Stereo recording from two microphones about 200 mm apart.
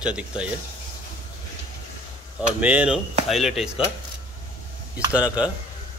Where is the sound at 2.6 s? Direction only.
5° right (ahead or behind).